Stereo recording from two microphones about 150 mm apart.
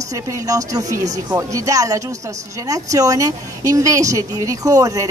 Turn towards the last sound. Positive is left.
turn(degrees=-20)  # may be behind; listen again after turning